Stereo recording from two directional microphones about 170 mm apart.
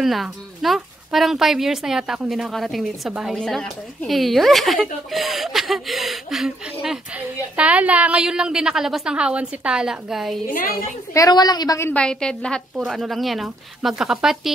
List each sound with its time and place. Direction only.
0.0 s speech: centre (ahead or behind)
11.1 s a woman's voice: 20° left (ahead or behind)
11.9 s speech: 5° left (ahead or behind)